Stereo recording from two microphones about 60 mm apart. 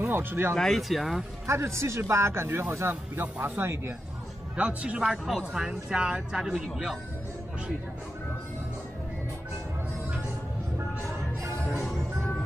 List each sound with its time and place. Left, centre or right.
0.1 s speech: right
0.6 s speech: centre
1.5 s a man's voice: right
3.2 s speech: right
4.6 s speech: centre
5.0 s speech: centre